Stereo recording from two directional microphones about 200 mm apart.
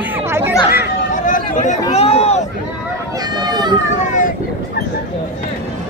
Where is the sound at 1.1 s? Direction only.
40° left (ahead or behind).